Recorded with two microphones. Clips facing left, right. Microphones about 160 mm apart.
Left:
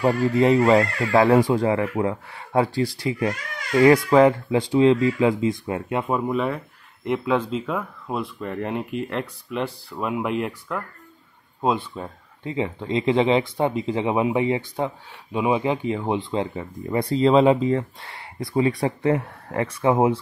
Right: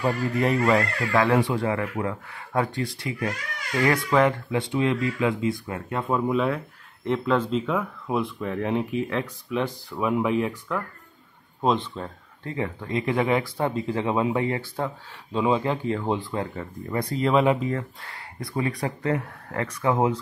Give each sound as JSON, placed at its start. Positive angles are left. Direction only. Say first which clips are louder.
{"t": 0.0, "sound": "speech", "louder": "left 5 dB", "side_deg": 25}
{"t": 6.2, "sound": "speech", "louder": "even", "side_deg": 0}
{"t": 11.6, "sound": "speech", "louder": "even", "side_deg": 10}